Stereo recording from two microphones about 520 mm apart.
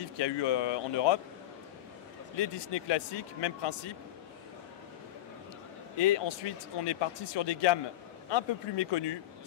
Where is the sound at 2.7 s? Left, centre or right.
Left.